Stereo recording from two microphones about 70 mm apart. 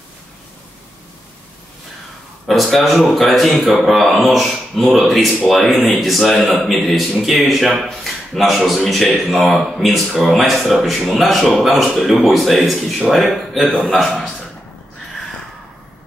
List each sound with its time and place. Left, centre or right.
2.4 s speech: centre